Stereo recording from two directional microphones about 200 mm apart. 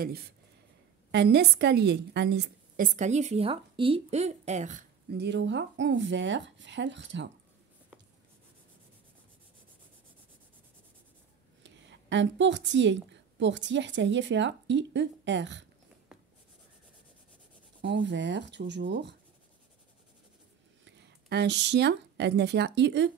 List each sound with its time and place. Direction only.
1.1 s speech: 55° right (ahead or behind)
3.0 s speech: 35° right (ahead or behind)
5.1 s speech: 60° right (ahead or behind)
11.6 s a woman's voice: 65° right (ahead or behind)
17.8 s speech: 60° right (ahead or behind)
20.8 s speech: 60° right (ahead or behind)